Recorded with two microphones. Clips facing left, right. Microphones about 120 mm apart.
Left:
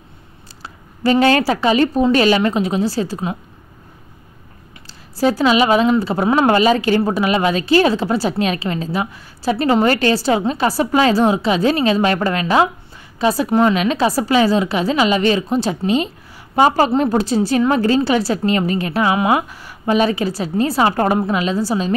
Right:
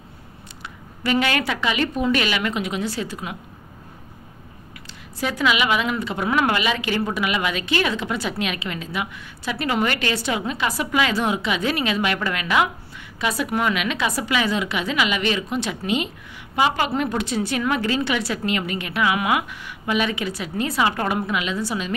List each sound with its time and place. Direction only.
0.6 s a woman's voice: 35° left (ahead or behind)
5.2 s a woman's voice: 35° left (ahead or behind)